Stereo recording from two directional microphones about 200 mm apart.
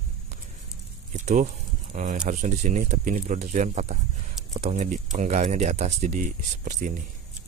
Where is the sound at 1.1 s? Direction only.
40° right (ahead or behind).